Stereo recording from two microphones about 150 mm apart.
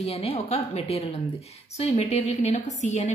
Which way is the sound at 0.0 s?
40° left (ahead or behind).